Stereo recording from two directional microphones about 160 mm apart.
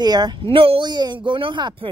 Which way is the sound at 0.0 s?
25° right (ahead or behind).